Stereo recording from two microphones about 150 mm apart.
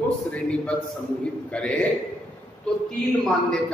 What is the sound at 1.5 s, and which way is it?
Speech, 5° left (ahead or behind).